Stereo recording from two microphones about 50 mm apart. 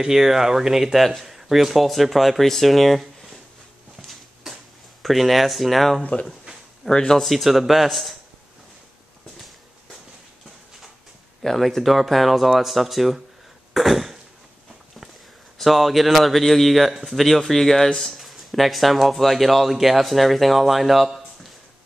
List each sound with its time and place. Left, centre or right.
0.0 s a man's voice: centre
5.0 s a man's voice: centre
6.8 s speech: centre
7.2 s a man's voice: centre
11.4 s a man's voice: centre
15.5 s a man's voice: centre